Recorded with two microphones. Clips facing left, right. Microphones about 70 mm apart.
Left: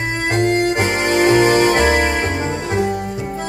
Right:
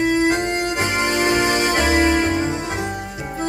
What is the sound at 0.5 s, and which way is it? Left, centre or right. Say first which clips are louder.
Music: left 5 dB; left.